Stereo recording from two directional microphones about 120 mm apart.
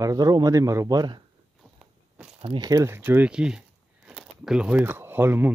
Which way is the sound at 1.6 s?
5° right (ahead or behind).